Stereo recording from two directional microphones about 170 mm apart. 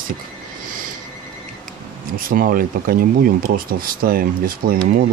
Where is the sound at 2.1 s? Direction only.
55° right (ahead or behind).